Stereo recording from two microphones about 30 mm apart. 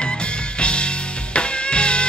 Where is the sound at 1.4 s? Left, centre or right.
Left.